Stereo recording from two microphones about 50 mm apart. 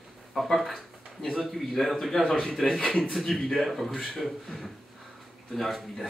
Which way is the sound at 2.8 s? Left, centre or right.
Centre.